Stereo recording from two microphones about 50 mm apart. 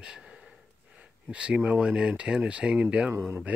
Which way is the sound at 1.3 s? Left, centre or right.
Right.